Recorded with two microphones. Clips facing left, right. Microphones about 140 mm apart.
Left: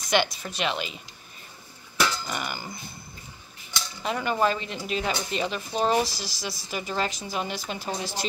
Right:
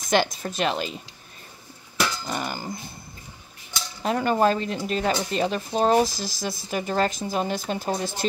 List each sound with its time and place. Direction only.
0.1 s speech: 40° right (ahead or behind)
2.2 s speech: 35° right (ahead or behind)
4.0 s speech: 40° right (ahead or behind)